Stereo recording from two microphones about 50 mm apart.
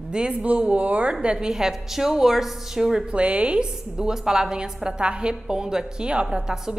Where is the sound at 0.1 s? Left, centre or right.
Centre.